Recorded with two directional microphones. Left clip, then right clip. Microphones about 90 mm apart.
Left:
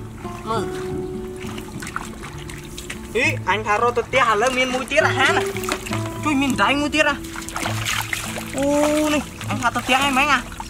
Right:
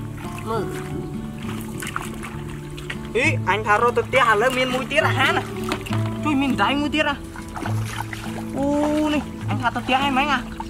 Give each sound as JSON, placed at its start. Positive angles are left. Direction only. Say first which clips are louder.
{"t": 3.1, "sound": "speech", "louder": "left 1 dB", "side_deg": -25}
{"t": 7.6, "sound": "music", "louder": "left 7 dB", "side_deg": 35}
{"t": 9.0, "sound": "speech", "louder": "left 2 dB", "side_deg": 5}